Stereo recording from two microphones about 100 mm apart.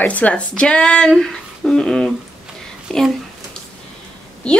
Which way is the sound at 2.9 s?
10° left (ahead or behind).